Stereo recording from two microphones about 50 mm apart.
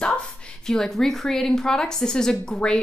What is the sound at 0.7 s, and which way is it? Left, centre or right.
A woman's voice, centre.